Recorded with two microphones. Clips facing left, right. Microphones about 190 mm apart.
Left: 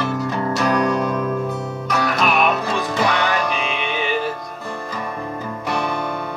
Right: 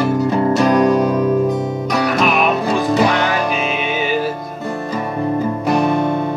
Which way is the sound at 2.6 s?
30° right (ahead or behind).